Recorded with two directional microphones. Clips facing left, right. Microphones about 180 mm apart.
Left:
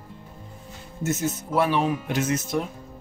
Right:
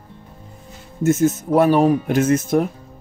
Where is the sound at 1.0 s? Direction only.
50° right (ahead or behind).